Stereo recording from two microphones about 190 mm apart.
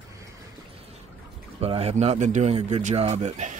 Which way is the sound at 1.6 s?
30° right (ahead or behind).